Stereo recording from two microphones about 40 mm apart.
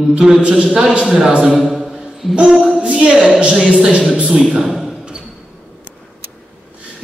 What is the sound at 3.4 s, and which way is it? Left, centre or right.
Speech, right.